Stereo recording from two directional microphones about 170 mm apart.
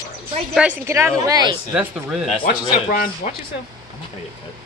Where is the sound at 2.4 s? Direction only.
50° left (ahead or behind).